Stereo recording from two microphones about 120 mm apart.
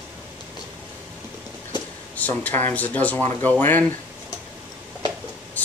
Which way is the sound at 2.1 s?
15° left (ahead or behind).